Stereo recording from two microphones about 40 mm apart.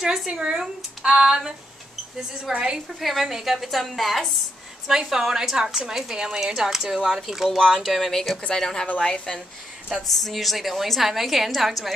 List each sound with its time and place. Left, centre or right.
0.3 s a sound: right
2.5 s a sound: right
3.0 s a woman's voice: centre
4.8 s a woman's voice: centre
8.1 s a woman's voice: centre
10.0 s a woman's voice: centre